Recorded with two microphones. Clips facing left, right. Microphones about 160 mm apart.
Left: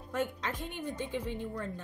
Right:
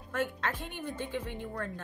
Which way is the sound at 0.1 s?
15° left (ahead or behind).